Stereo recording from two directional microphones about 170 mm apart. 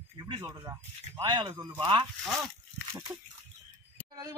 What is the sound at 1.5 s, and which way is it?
Speech, 15° right (ahead or behind).